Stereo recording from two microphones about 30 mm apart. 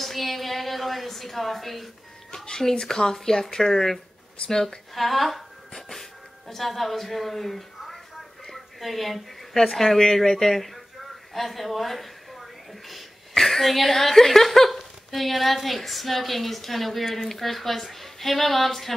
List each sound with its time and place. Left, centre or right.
0.0 s a woman's voice: centre
2.6 s speech: centre
4.9 s speech: centre
5.8 s a sound: centre
9.6 s speech: centre
11.3 s a sound: centre
13.3 s speech: centre